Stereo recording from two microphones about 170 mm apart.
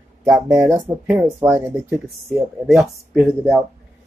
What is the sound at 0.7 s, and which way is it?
Speech, 15° right (ahead or behind).